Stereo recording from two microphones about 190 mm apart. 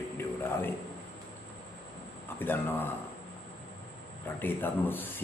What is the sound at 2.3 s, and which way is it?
Speech, 10° left (ahead or behind).